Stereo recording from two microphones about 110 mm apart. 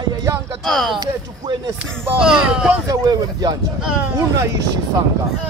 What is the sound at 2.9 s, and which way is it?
Speech, 40° right (ahead or behind).